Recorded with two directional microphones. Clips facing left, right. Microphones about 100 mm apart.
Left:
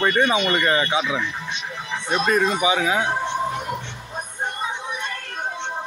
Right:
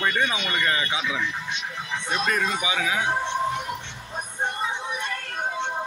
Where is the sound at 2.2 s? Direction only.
30° left (ahead or behind).